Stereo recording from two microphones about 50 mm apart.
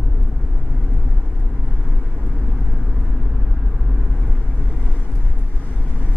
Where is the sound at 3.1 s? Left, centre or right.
Centre.